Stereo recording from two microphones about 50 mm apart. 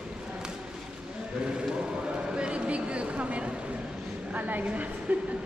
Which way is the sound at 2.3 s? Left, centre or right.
Centre.